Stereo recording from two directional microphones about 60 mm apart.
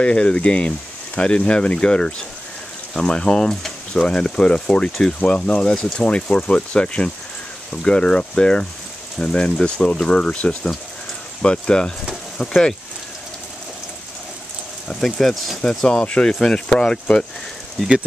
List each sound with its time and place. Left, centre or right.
0.0 s speech: centre
14.9 s speech: centre